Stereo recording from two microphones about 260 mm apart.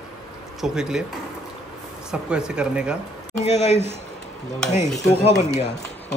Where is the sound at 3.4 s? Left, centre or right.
Left.